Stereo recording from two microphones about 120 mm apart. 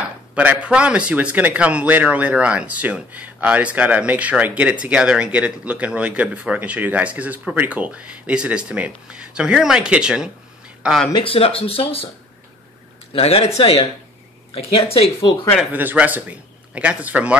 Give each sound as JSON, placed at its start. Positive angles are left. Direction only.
{"t": 0.3, "sound": "a man's voice", "side_deg": -10}
{"t": 11.1, "sound": "speech", "side_deg": 50}
{"t": 13.1, "sound": "speech", "side_deg": 55}
{"t": 15.7, "sound": "a man's voice", "side_deg": -15}